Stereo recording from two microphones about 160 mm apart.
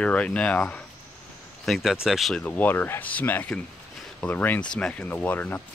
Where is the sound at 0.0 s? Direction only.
10° left (ahead or behind).